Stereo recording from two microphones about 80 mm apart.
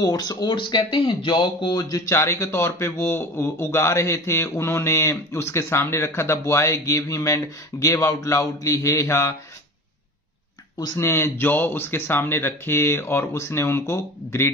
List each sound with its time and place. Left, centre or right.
0.0 s speech: left
2.0 s speech: left
11.0 s speech: left